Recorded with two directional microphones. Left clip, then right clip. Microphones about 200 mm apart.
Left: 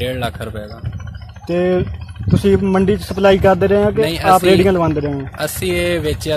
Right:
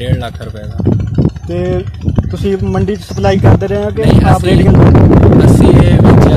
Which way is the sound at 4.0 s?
Centre (ahead or behind).